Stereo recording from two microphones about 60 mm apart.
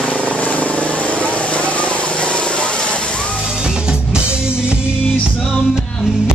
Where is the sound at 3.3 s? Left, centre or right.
Centre.